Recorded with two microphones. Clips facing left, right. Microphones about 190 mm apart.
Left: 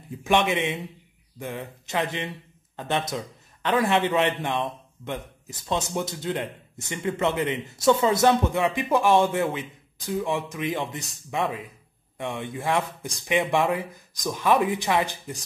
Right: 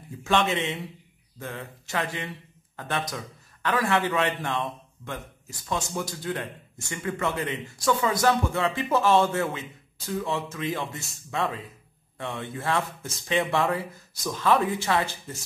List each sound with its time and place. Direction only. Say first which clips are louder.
0.2 s a man's voice: left 2 dB; 15° left (ahead or behind)